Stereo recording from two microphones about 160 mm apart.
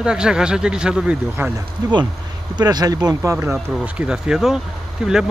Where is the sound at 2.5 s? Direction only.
25° right (ahead or behind).